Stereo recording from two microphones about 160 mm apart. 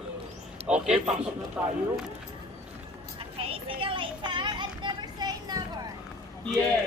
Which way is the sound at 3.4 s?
35° right (ahead or behind).